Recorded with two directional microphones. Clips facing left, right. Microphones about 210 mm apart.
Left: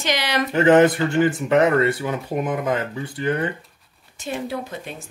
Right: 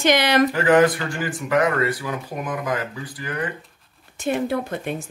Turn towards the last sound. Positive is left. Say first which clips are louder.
# right 5 dB
turn(degrees=-55)  # may be behind; listen again after turning